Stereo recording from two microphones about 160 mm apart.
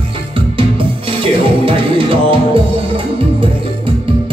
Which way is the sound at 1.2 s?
35° right (ahead or behind).